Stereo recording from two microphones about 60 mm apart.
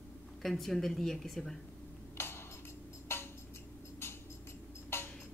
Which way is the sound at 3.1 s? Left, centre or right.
Left.